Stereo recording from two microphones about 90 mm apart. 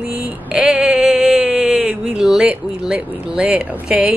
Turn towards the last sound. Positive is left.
turn(degrees=-10)  # may be behind; listen again after turning